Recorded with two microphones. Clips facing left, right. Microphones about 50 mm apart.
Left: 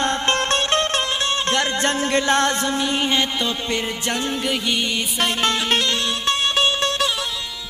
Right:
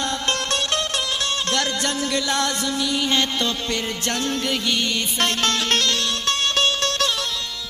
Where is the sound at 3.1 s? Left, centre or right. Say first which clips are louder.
Left 1 dB; centre.